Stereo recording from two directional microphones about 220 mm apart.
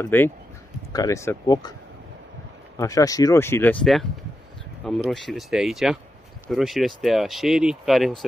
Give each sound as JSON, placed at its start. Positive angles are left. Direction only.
{"t": 0.0, "sound": "speech", "side_deg": 10}
{"t": 2.8, "sound": "speech", "side_deg": 15}
{"t": 3.8, "sound": "speech", "side_deg": 0}